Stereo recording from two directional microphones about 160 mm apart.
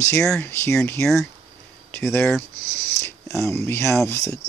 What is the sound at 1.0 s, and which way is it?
Speech, centre (ahead or behind).